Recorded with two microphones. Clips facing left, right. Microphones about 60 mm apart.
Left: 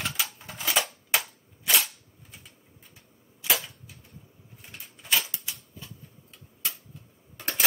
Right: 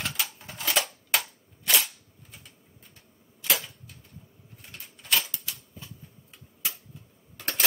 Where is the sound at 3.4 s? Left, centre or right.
Centre.